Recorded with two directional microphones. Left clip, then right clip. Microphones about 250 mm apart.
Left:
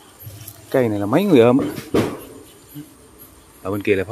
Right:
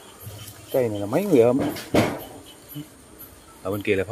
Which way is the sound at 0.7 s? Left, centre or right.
Left.